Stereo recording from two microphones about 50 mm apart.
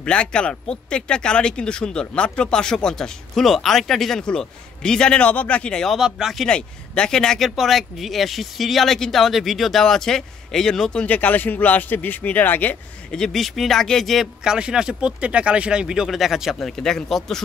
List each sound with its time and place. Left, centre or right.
0.0 s speech: centre
5.2 s speech: left
5.9 s speech: centre
6.5 s speech: centre
7.4 s speech: centre
11.1 s a man's voice: left
13.1 s speech: centre
14.4 s speech: centre
16.1 s speech: centre
16.5 s speech: centre